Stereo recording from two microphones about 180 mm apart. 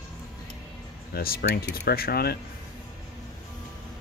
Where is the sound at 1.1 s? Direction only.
55° left (ahead or behind).